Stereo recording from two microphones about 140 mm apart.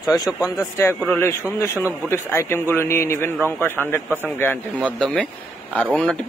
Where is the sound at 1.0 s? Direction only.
15° left (ahead or behind).